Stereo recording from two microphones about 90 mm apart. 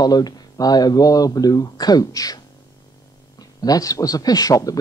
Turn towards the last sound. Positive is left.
turn(degrees=40)  # may be behind; listen again after turning